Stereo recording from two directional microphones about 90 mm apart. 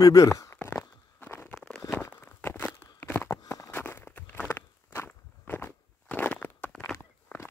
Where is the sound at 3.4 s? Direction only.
40° left (ahead or behind).